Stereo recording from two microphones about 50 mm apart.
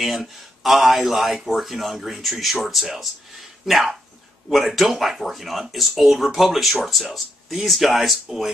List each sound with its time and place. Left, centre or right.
0.0 s speech: centre